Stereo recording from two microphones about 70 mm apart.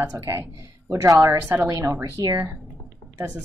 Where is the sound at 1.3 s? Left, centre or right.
Right.